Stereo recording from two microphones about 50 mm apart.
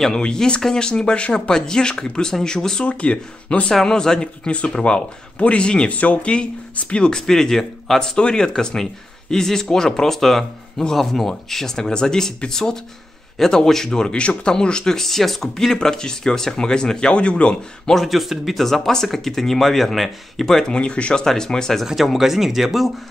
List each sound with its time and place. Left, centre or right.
0.0 s speech: centre
2.9 s speech: left
4.5 s speech: left
7.1 s speech: centre
17.9 s speech: centre
20.7 s speech: left
21.8 s speech: centre